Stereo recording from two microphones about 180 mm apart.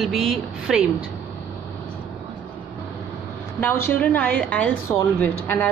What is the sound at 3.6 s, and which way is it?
A woman's voice, 10° left (ahead or behind).